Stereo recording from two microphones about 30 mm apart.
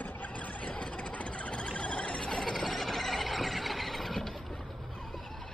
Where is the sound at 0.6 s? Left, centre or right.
Left.